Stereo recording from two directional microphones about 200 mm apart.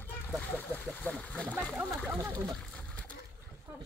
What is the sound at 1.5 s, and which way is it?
Splash, 5° right (ahead or behind).